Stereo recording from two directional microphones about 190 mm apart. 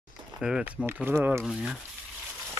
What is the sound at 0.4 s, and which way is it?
Speech, 5° right (ahead or behind).